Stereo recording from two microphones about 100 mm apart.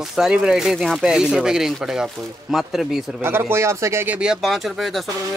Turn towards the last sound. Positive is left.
turn(degrees=0)  # may be behind; listen again after turning